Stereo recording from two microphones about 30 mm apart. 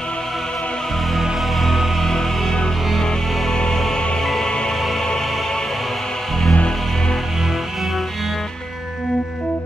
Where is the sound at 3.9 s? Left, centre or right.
Left.